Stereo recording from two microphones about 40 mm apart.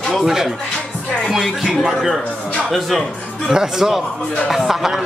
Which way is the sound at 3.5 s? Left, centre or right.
Centre.